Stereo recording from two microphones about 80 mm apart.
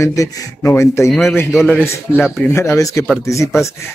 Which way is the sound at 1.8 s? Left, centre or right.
Left.